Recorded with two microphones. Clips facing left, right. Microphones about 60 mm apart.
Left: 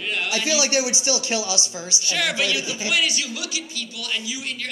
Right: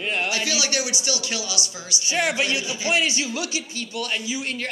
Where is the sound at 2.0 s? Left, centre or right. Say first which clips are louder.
Right 1 dB; right.